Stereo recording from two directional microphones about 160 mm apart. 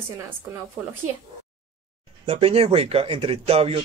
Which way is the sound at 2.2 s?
40° right (ahead or behind).